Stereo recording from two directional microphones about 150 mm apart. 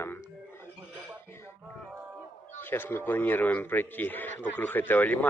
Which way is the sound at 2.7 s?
15° left (ahead or behind).